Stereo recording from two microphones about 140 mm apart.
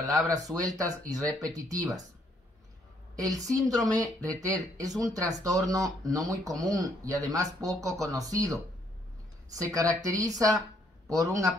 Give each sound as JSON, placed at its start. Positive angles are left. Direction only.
{"t": 0.3, "sound": "speech", "side_deg": -25}
{"t": 3.2, "sound": "speech", "side_deg": -25}
{"t": 9.6, "sound": "speech", "side_deg": -25}